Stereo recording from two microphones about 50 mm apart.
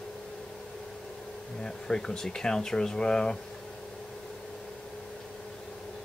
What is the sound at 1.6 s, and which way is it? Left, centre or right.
Speech, centre.